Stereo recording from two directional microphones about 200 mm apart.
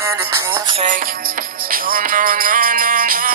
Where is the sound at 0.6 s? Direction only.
25° right (ahead or behind).